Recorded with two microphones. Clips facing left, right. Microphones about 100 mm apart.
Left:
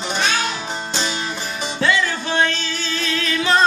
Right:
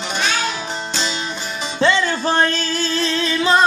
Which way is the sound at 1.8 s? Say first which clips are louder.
Right 3 dB; 30° right (ahead or behind).